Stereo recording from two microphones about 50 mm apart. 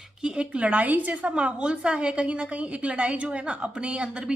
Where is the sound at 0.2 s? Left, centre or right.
Centre.